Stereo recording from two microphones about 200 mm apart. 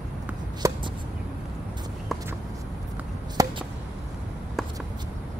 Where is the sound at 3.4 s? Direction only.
20° right (ahead or behind).